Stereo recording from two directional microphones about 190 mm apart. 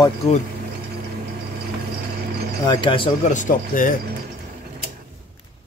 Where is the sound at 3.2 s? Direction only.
40° left (ahead or behind).